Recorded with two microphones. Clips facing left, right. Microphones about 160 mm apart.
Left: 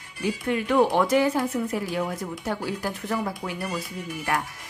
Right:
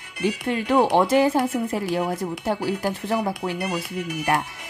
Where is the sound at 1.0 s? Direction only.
30° right (ahead or behind).